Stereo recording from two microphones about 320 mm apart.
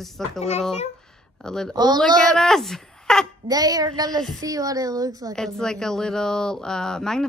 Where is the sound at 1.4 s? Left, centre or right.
Centre.